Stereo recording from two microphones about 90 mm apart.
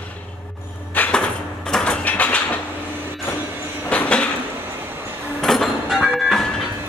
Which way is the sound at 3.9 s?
15° left (ahead or behind).